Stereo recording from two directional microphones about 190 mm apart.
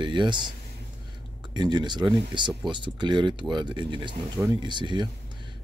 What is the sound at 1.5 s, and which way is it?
Speech, 25° right (ahead or behind).